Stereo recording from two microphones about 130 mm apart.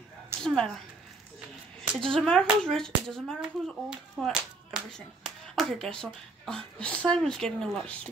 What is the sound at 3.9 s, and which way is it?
Clapping, centre (ahead or behind).